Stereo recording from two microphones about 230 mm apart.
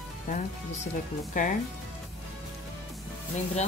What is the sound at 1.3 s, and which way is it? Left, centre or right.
Speech, left.